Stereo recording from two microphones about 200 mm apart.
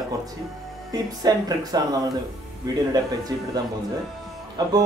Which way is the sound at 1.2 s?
20° right (ahead or behind).